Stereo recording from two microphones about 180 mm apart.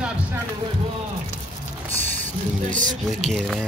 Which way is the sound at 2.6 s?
45° right (ahead or behind).